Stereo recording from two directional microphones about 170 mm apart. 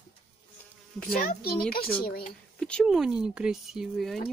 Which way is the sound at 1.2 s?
60° left (ahead or behind).